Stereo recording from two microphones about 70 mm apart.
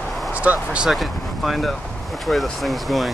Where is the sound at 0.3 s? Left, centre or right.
Right.